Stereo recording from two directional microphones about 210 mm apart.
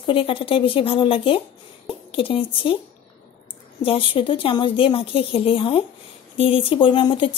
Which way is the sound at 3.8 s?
25° left (ahead or behind).